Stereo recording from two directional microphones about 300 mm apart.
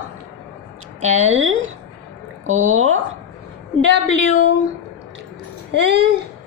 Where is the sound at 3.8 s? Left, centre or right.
Right.